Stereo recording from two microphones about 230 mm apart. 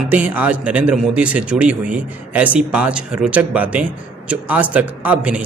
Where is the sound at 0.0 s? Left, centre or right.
Centre.